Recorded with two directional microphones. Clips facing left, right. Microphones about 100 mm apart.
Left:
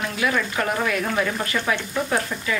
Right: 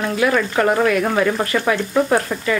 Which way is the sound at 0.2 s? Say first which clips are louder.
Right 6 dB; 55° right (ahead or behind).